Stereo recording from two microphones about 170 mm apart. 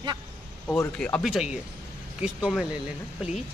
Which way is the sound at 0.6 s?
10° left (ahead or behind).